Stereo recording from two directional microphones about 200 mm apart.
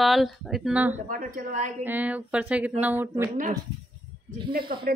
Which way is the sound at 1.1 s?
40° right (ahead or behind).